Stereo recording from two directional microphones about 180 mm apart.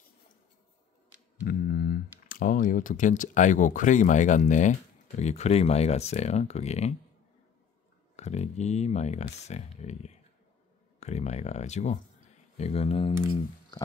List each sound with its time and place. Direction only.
1.5 s speech: 55° left (ahead or behind); by 7.0 s 35° left (ahead or behind)
8.2 s speech: 40° left (ahead or behind)